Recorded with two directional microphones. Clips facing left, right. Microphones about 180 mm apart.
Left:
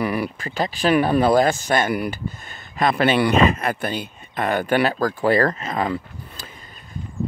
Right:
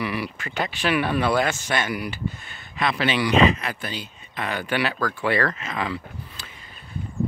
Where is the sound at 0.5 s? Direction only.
35° left (ahead or behind).